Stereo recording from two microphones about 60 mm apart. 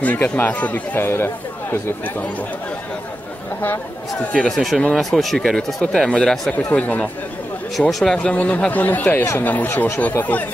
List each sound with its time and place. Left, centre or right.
0.0 s speech: left
1.0 s speech: left
4.2 s speech: centre
4.5 s speech: centre
6.7 s speech: centre
8.4 s speech: left